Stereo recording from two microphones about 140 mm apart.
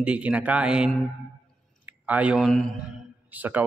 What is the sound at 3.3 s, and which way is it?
Speech, 10° right (ahead or behind).